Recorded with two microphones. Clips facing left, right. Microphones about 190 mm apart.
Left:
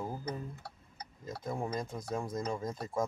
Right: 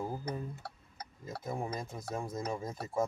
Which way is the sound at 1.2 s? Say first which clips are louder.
Left 1 dB; 5° right (ahead or behind).